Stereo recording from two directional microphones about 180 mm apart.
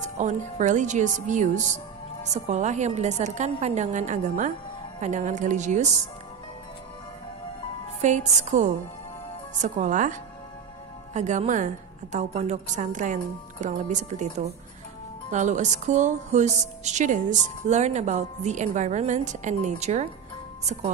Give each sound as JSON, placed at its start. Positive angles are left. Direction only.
{"t": 0.2, "sound": "a woman's voice", "side_deg": -40}
{"t": 8.0, "sound": "a woman's voice", "side_deg": -40}
{"t": 11.1, "sound": "a woman's voice", "side_deg": -40}